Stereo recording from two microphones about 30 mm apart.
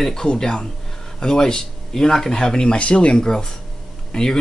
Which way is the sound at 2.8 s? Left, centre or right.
Left.